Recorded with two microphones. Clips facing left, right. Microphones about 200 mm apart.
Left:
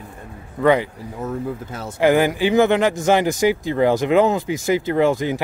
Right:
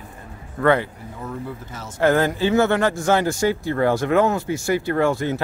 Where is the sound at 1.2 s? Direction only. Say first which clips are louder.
Left 5 dB; 50° left (ahead or behind).